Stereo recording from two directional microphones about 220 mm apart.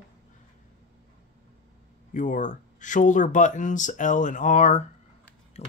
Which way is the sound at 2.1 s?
35° left (ahead or behind).